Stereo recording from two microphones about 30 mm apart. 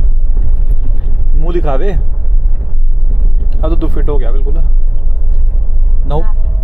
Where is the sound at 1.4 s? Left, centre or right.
Right.